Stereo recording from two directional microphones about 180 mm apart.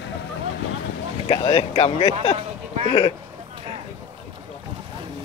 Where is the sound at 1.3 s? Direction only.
30° left (ahead or behind).